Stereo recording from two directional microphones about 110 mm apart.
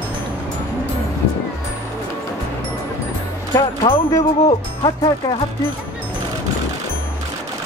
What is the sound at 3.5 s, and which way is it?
Speech, 40° left (ahead or behind).